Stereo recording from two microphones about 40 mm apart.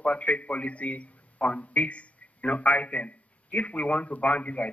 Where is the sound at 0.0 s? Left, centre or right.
Left.